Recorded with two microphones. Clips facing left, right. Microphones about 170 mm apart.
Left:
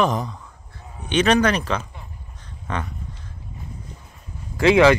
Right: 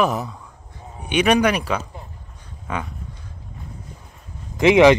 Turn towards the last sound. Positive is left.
turn(degrees=-20)  # may be behind; listen again after turning